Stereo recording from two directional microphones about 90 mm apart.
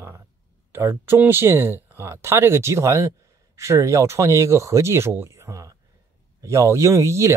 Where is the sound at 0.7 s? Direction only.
30° right (ahead or behind).